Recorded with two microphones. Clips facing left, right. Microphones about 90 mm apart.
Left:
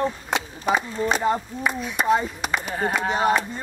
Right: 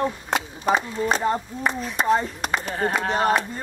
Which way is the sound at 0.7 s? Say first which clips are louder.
Right 1 dB; 5° left (ahead or behind).